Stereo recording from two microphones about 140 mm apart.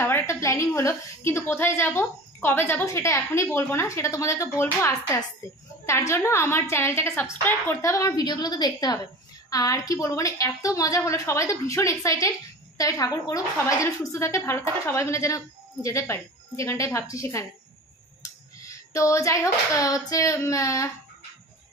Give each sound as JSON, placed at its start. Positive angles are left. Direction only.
{"t": 0.0, "sound": "a woman's voice", "side_deg": 20}
{"t": 18.2, "sound": "hands", "side_deg": 20}